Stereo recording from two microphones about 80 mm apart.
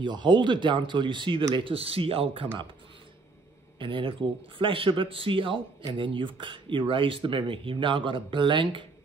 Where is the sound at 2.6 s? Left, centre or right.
Right.